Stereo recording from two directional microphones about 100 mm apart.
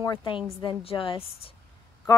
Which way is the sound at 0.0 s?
40° left (ahead or behind).